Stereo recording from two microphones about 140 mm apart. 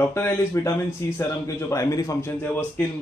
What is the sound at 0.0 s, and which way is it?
Speech, 15° left (ahead or behind).